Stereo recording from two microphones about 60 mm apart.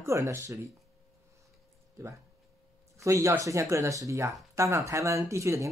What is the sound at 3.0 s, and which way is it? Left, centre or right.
Speech, right.